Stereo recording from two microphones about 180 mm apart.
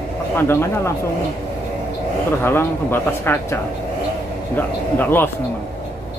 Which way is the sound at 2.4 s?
10° left (ahead or behind).